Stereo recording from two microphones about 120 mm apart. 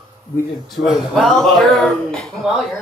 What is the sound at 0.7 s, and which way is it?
Speech, centre (ahead or behind).